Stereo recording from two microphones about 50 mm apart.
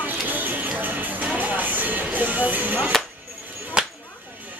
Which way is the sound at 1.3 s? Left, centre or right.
Right.